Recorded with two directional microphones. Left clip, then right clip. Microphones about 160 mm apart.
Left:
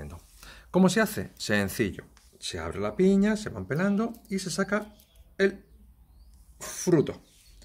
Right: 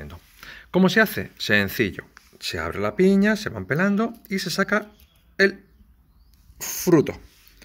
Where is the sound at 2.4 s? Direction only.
20° right (ahead or behind).